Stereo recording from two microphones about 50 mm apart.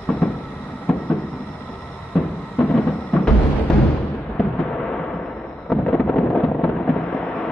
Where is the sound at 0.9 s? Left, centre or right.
Centre.